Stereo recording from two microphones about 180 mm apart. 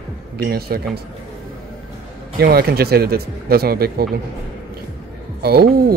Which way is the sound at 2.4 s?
60° right (ahead or behind).